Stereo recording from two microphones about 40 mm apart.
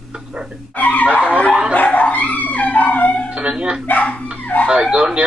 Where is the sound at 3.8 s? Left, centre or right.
Left.